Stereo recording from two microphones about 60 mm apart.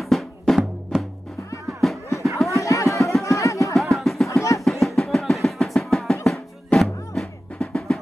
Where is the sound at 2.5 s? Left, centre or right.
Left.